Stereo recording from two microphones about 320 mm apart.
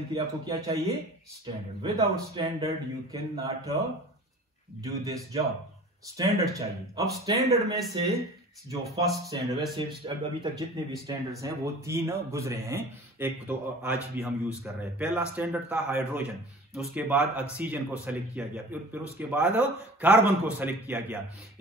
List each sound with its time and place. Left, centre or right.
0.1 s speech: centre
4.8 s speech: centre